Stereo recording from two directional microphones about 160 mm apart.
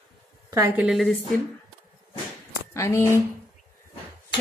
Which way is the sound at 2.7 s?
20° left (ahead or behind).